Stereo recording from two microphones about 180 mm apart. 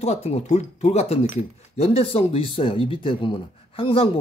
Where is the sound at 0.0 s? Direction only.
35° left (ahead or behind).